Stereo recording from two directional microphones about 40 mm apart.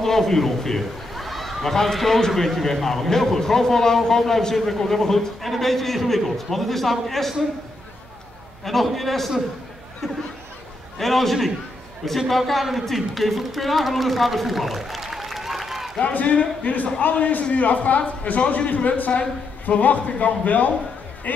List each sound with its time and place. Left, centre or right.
0.0 s a man's voice: centre
8.6 s a man's voice: centre
16.1 s a man's voice: left